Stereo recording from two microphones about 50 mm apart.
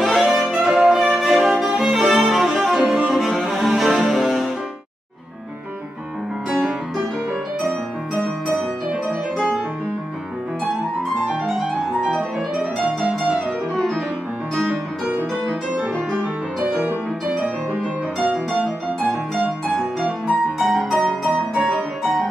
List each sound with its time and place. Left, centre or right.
0.0 s violin: centre
2.7 s music: centre
3.1 s cello: centre
12.7 s music: right
14.5 s music: right
18.5 s music: right
20.6 s music: centre
21.5 s piano: right